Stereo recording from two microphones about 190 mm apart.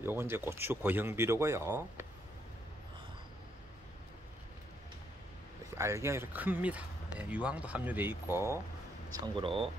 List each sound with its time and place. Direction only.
0.0 s speech: 10° right (ahead or behind)
5.8 s speech: 15° right (ahead or behind)
9.1 s speech: 25° right (ahead or behind)